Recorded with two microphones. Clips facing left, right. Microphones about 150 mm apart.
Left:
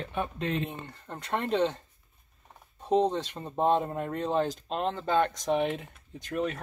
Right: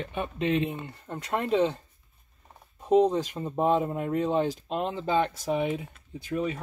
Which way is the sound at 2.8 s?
5° right (ahead or behind).